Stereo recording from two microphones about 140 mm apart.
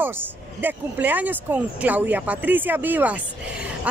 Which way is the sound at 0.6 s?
15° right (ahead or behind).